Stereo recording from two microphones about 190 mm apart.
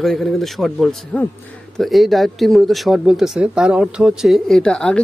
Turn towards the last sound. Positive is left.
turn(degrees=5)  # may be behind; listen again after turning